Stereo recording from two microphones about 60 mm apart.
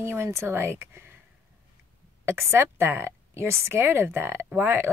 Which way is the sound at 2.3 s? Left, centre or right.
Right.